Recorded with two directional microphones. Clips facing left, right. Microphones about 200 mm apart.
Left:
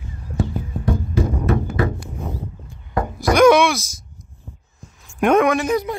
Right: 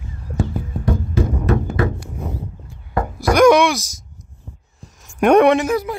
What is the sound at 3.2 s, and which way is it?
Wail, 10° right (ahead or behind).